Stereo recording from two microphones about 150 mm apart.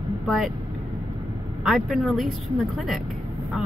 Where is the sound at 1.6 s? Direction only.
Centre (ahead or behind).